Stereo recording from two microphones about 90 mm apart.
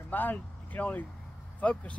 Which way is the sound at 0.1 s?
20° left (ahead or behind).